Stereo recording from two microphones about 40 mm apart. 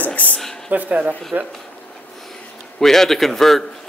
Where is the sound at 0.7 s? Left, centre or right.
Right.